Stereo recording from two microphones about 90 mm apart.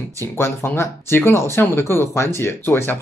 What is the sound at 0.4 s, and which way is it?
Speech, 25° left (ahead or behind).